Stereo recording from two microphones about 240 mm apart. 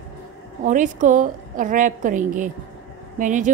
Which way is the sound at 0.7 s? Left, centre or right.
Right.